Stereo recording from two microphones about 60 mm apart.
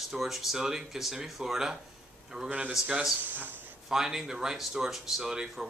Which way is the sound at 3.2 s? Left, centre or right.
Right.